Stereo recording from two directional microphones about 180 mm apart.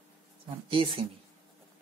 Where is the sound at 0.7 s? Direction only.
30° right (ahead or behind).